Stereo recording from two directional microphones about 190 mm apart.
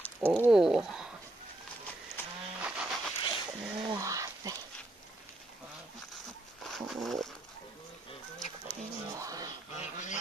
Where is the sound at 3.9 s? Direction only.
15° right (ahead or behind).